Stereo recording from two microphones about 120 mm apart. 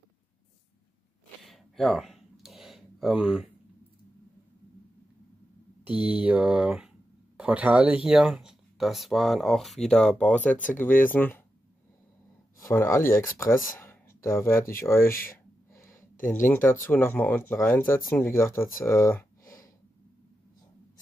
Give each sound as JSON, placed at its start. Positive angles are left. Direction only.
{"t": 1.4, "sound": "a sound", "side_deg": 0}
{"t": 6.0, "sound": "speech", "side_deg": -10}
{"t": 12.7, "sound": "speech", "side_deg": 20}